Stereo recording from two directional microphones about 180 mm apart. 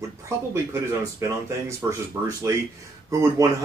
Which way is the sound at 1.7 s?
15° right (ahead or behind).